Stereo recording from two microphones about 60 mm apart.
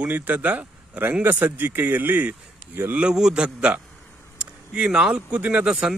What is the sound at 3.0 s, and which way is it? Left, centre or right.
A man's voice, centre.